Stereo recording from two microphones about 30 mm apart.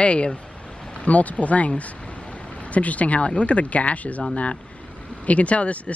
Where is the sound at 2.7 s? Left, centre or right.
Left.